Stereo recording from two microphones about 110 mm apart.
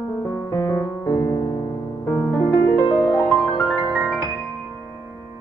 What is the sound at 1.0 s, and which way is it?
Music, 40° left (ahead or behind).